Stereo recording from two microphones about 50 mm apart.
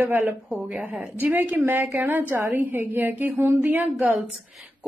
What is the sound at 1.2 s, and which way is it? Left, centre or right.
A woman's voice, right.